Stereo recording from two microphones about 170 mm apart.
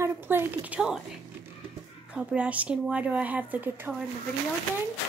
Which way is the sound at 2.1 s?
5° right (ahead or behind).